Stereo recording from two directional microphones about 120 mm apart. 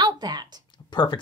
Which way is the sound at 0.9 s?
40° left (ahead or behind).